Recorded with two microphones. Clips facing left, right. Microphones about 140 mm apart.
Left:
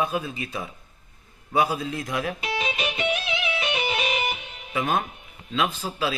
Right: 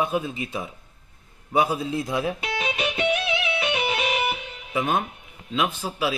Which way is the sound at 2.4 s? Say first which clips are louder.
Right 1 dB; centre (ahead or behind).